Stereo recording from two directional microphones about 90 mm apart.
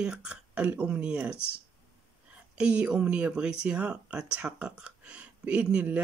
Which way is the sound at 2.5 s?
15° right (ahead or behind).